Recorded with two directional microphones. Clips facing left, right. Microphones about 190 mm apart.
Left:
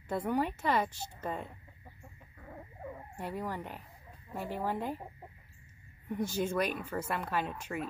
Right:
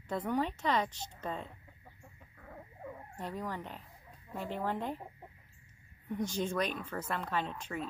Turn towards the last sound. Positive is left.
turn(degrees=10)  # may be behind; listen again after turning